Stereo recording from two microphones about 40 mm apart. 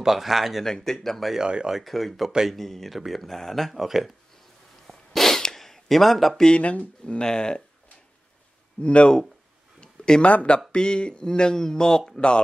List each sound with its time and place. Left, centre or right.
0.0 s speech: centre
0.7 s speech: centre
1.4 s speech: right
1.7 s speech: centre
4.8 s a sound: centre
6.6 s speech: left
7.2 s speech: centre
8.8 s speech: left
10.2 s speech: left; by 12.0 s centre